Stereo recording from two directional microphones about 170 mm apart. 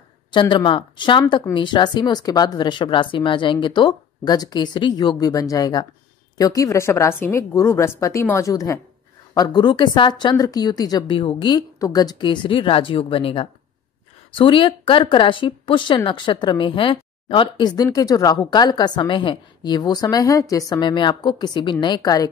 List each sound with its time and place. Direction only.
0.3 s a woman's voice: 25° left (ahead or behind)